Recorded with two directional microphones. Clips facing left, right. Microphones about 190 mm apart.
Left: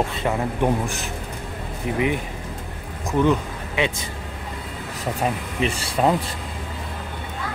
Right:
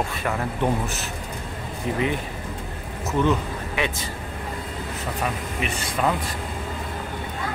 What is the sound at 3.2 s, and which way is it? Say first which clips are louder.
Speech: left 2 dB; 15° left (ahead or behind).